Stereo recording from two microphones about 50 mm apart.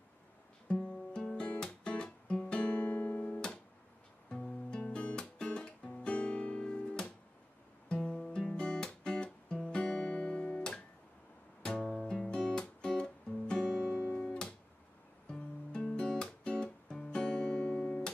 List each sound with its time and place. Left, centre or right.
0.7 s music: centre
2.3 s guitar: centre
2.6 s guitar: left
3.3 s music: centre
8.5 s guitar: centre
11.6 s music: centre
16.9 s guitar: centre